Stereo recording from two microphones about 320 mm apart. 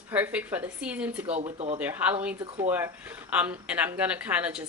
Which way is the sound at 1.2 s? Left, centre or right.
Centre.